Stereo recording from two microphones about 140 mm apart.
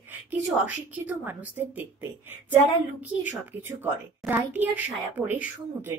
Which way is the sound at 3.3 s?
15° right (ahead or behind).